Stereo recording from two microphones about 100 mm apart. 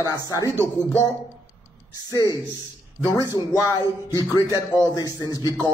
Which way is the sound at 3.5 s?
40° left (ahead or behind).